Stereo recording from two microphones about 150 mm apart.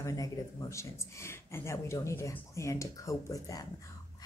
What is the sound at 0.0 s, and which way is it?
Speech, 25° left (ahead or behind).